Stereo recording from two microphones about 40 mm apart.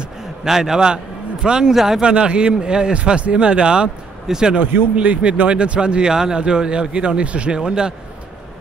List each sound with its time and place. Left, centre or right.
0.4 s a man's voice: centre
2.0 s speech: right
4.9 s speech: right